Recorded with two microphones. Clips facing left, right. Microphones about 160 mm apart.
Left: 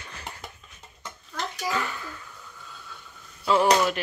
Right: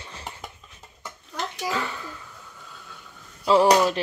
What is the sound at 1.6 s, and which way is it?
Speech, 30° right (ahead or behind).